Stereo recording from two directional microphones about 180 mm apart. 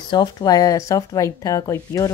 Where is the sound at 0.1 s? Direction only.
20° left (ahead or behind).